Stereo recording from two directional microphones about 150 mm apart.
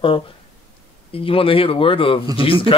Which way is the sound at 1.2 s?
35° left (ahead or behind).